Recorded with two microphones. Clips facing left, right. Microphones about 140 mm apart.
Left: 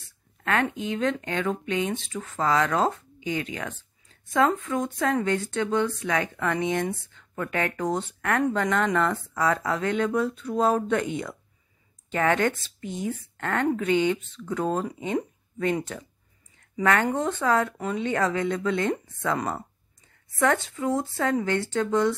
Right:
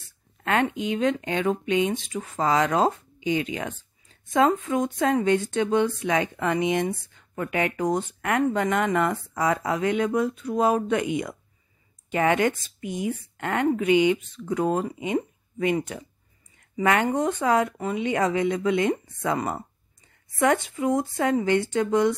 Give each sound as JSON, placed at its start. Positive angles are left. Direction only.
{"t": 0.4, "sound": "speech", "side_deg": -20}